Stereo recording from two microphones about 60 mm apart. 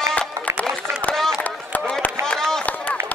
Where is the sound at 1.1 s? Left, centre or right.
Left.